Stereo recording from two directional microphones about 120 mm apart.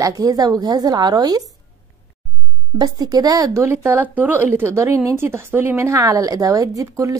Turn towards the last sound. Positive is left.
turn(degrees=-25)  # may be behind; listen again after turning